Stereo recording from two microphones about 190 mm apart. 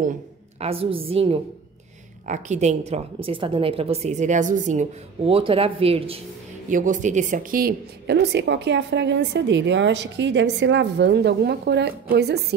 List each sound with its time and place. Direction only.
0.6 s a woman's voice: 30° right (ahead or behind)
2.2 s a woman's voice: 40° right (ahead or behind)
6.7 s a woman's voice: 40° right (ahead or behind); by 12.5 s 60° right (ahead or behind)